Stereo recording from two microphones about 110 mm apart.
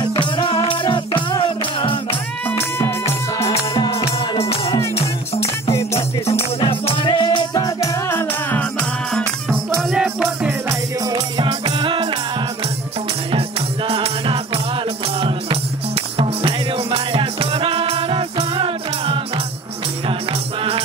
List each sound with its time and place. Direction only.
0.0 s music: 45° left (ahead or behind)
3.7 s music: 30° left (ahead or behind)
4.4 s music: 65° left (ahead or behind)
6.6 s music: 50° left (ahead or behind); by 9.3 s 10° left (ahead or behind)
9.8 s music: centre (ahead or behind)
10.7 s music: 35° right (ahead or behind)
11.4 s music: 50° right (ahead or behind)
13.3 s music: 55° right (ahead or behind)